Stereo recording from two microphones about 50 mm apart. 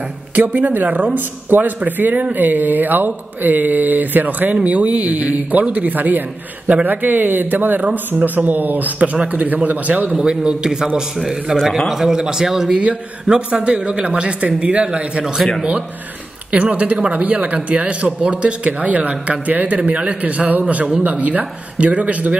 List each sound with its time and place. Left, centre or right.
0.4 s speech: right
10.1 s a man's voice: centre
11.9 s a man's voice: centre
16.5 s speech: right
20.6 s speech: right